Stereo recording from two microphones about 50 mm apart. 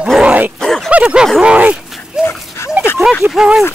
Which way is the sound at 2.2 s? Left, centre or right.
Centre.